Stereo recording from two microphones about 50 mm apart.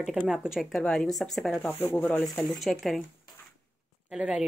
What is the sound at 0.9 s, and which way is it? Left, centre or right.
Speech, centre.